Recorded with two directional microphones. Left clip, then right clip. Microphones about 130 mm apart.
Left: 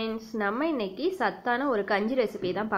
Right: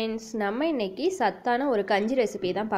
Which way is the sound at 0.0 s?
40° right (ahead or behind).